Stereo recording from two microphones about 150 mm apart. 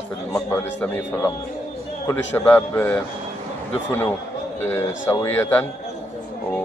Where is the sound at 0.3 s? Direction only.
10° left (ahead or behind).